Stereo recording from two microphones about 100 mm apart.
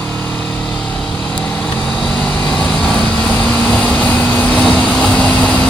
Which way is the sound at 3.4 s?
15° left (ahead or behind).